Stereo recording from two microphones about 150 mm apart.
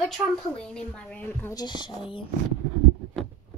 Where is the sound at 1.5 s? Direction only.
30° left (ahead or behind).